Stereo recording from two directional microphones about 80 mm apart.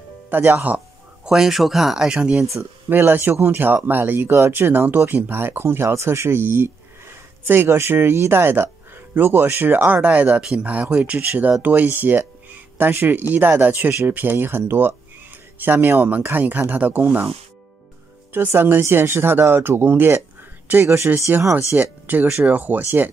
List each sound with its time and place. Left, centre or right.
0.3 s speech: right
1.2 s speech: centre
2.9 s speech: right
18.5 s speech: right
21.7 s speech: right